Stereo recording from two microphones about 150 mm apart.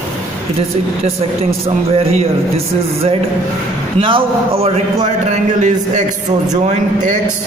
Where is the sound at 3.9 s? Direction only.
35° right (ahead or behind).